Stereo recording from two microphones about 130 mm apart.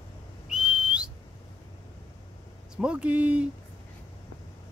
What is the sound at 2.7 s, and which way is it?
Speech, 10° right (ahead or behind).